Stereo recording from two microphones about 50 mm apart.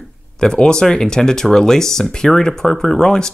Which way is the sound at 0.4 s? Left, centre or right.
Centre.